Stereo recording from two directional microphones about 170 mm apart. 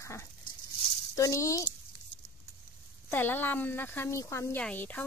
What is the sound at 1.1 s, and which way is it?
Speech, 20° left (ahead or behind).